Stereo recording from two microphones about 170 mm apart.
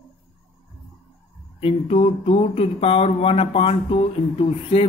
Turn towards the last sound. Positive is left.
turn(degrees=30)  # may be behind; listen again after turning